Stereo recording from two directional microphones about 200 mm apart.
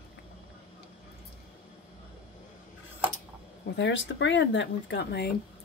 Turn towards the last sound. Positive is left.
turn(degrees=55)  # may be behind; listen again after turning